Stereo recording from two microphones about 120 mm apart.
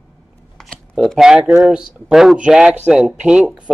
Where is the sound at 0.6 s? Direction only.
Centre (ahead or behind).